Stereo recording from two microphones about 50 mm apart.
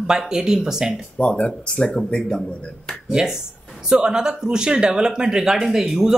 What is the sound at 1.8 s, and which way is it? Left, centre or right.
Speech, centre.